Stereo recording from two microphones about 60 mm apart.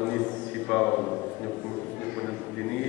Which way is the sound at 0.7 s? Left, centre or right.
Centre.